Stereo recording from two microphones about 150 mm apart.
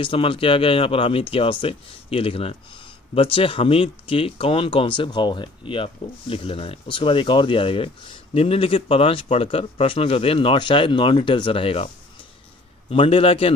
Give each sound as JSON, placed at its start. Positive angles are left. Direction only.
{"t": 0.0, "sound": "speech", "side_deg": 40}
{"t": 12.9, "sound": "speech", "side_deg": 40}